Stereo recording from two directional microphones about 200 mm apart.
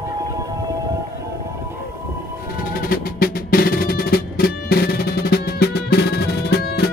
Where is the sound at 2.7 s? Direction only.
45° left (ahead or behind).